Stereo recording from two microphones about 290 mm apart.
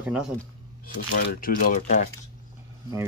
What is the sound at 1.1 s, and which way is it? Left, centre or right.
Speech, left.